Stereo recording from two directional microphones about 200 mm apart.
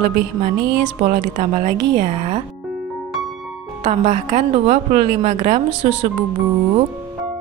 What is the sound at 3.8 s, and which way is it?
A woman's voice, 35° right (ahead or behind).